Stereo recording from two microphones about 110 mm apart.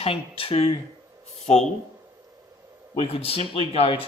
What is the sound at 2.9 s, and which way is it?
Speech, 60° left (ahead or behind).